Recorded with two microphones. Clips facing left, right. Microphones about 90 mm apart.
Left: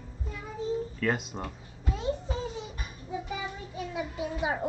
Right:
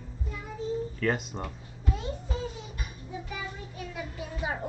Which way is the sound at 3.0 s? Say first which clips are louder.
Left 4 dB; 20° left (ahead or behind).